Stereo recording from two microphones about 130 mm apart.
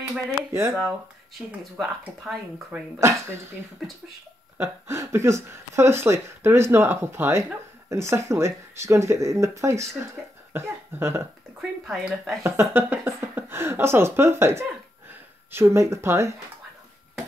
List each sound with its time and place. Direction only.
0.5 s speech: 20° right (ahead or behind)
1.6 s speech: 5° right (ahead or behind)
3.0 s speech: 20° right (ahead or behind)
4.6 s speech: 20° right (ahead or behind)
10.5 s cough: 20° right (ahead or behind)
11.8 s speech: centre (ahead or behind)
12.4 s speech: 15° right (ahead or behind)